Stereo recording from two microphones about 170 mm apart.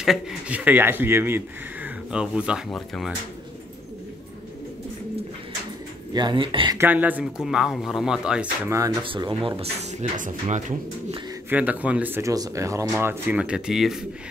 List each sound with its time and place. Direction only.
0.0 s speech: centre (ahead or behind)
6.1 s speech: 30° right (ahead or behind)
6.8 s speech: 10° right (ahead or behind)
8.6 s speech: 20° right (ahead or behind)
9.0 s speech: 30° right (ahead or behind)
11.5 s speech: 10° right (ahead or behind)